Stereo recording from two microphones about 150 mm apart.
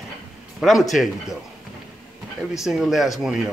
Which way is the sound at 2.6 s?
5° right (ahead or behind).